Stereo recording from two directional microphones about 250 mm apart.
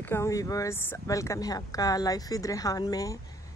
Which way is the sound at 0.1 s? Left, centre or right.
Centre.